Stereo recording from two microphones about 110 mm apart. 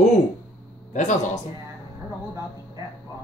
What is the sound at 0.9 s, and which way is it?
Speech, 90° left.